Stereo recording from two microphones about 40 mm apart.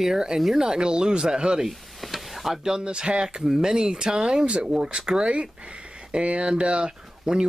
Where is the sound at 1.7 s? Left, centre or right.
Centre.